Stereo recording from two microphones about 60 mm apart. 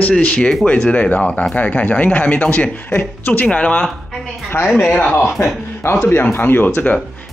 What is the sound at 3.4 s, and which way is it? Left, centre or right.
Speech, centre.